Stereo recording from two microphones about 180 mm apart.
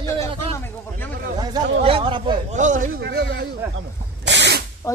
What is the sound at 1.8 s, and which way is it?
Speech, 30° right (ahead or behind).